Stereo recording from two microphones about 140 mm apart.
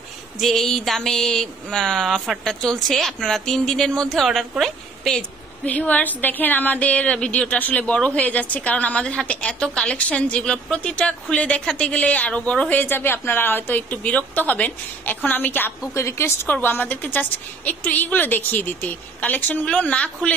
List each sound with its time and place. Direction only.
0.4 s a woman's voice: centre (ahead or behind)